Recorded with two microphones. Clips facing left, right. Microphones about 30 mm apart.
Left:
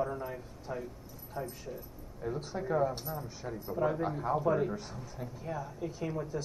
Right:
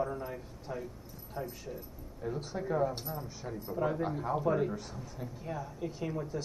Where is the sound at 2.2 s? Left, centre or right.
Centre.